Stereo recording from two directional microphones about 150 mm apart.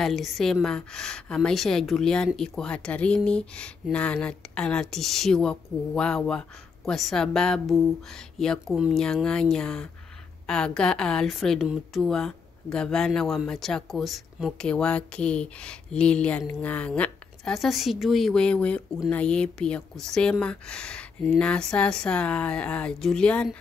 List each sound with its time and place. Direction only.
0.0 s a woman's voice: centre (ahead or behind)